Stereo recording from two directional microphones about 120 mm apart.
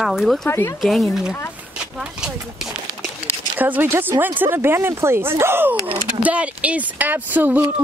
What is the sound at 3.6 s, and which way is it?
Speech, 15° right (ahead or behind).